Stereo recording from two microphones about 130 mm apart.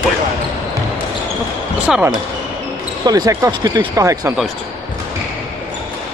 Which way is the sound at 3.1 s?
30° right (ahead or behind).